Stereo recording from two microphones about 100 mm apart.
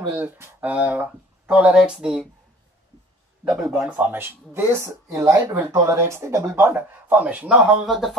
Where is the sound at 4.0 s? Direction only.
20° right (ahead or behind).